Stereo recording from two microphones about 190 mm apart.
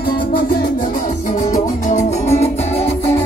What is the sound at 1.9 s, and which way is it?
Music, 40° left (ahead or behind).